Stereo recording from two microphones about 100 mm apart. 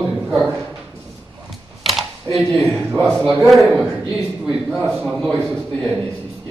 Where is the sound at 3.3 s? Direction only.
Centre (ahead or behind).